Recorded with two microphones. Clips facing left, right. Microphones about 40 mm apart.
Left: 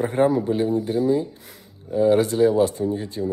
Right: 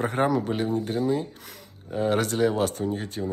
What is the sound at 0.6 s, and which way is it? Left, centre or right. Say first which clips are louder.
Speech: left 4 dB; right.